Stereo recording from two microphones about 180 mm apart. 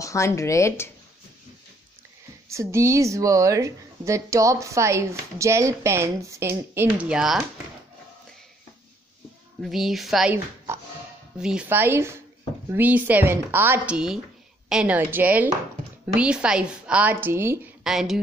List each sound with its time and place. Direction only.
0.0 s speech: 15° left (ahead or behind)
2.5 s a woman's voice: 15° right (ahead or behind)
9.6 s a woman's voice: centre (ahead or behind)
11.3 s a woman's voice: 5° right (ahead or behind)
17.8 s a woman's voice: centre (ahead or behind)